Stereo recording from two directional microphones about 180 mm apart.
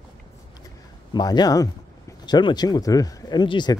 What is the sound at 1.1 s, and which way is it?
Speech, 25° left (ahead or behind).